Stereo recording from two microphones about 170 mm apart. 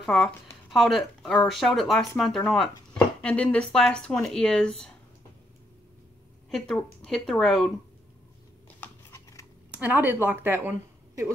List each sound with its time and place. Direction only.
0.0 s speech: centre (ahead or behind)
6.5 s speech: 5° left (ahead or behind)
8.8 s a sound: 15° left (ahead or behind)
9.8 s speech: 10° right (ahead or behind)